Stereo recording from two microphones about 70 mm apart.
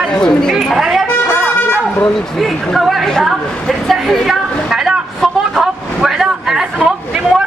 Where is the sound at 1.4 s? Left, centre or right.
Left.